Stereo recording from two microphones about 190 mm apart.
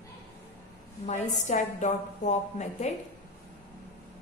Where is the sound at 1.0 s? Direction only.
40° left (ahead or behind).